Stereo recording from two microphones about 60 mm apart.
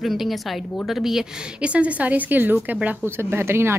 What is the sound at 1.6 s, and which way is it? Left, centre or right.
Speech, right.